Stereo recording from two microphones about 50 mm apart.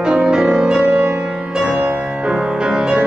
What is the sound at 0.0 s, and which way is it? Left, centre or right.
Music, centre.